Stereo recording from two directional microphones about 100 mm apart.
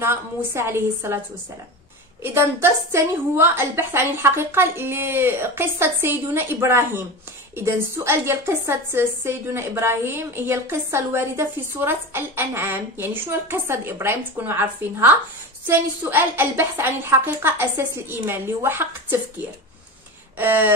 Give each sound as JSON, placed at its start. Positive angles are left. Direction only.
{"t": 0.0, "sound": "a woman's voice", "side_deg": -25}
{"t": 2.2, "sound": "a woman's voice", "side_deg": -25}
{"t": 20.3, "sound": "a woman's voice", "side_deg": -20}